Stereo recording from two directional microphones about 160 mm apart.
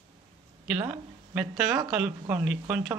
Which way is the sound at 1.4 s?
5° right (ahead or behind).